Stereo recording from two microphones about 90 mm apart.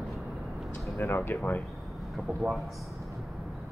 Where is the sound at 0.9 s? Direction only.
25° left (ahead or behind).